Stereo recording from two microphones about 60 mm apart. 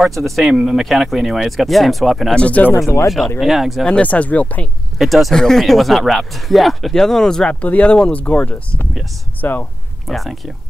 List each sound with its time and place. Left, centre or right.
0.0 s speech: centre
2.3 s speech: left
3.3 s speech: centre
3.8 s speech: centre
4.9 s speech: centre
7.6 s speech: left
10.0 s speech: centre